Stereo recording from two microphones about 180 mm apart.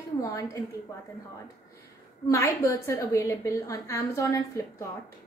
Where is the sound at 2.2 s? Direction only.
15° left (ahead or behind).